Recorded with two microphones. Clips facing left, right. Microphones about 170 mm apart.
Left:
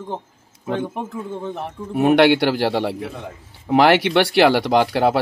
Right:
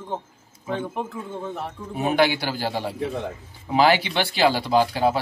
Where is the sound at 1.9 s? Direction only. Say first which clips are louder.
Left 7 dB; 60° left (ahead or behind).